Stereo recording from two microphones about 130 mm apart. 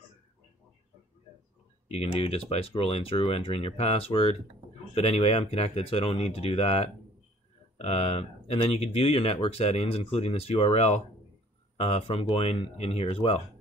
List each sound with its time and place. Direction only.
1.9 s speech: 50° left (ahead or behind)